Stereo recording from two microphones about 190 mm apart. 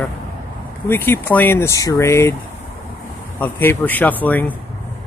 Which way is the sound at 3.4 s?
10° left (ahead or behind).